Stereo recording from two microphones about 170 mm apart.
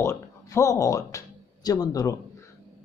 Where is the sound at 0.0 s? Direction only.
15° left (ahead or behind).